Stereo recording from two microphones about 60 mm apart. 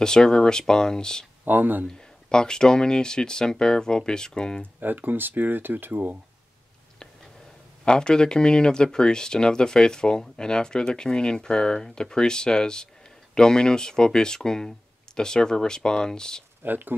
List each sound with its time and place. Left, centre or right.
0.0 s speech: centre
1.4 s speech: right
2.2 s speech: centre
4.7 s speech: right
7.8 s speech: centre
16.6 s speech: right